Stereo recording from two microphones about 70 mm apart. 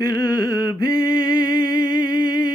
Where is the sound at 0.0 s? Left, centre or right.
Left.